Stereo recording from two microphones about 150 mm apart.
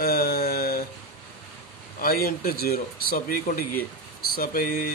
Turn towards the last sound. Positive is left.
turn(degrees=75)  # may be behind; listen again after turning